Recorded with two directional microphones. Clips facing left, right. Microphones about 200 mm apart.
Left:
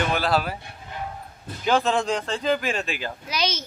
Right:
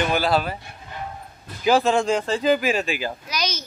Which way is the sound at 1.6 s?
5° right (ahead or behind).